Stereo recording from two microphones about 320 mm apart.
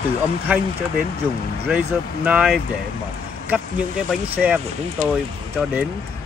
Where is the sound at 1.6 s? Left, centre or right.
Centre.